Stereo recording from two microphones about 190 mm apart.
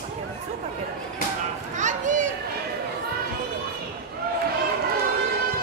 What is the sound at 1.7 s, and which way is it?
Children playing, 40° right (ahead or behind).